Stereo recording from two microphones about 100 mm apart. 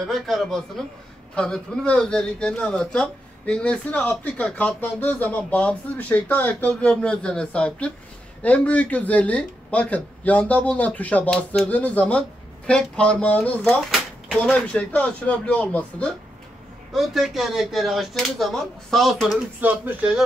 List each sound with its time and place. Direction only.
0.0 s speech: centre (ahead or behind)
13.7 s a sound: centre (ahead or behind)
14.5 s speech: 10° left (ahead or behind)
16.9 s speech: centre (ahead or behind)
19.6 s speech: 15° right (ahead or behind)